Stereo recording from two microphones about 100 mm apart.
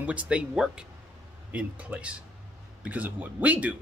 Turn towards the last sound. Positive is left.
turn(degrees=-15)  # may be behind; listen again after turning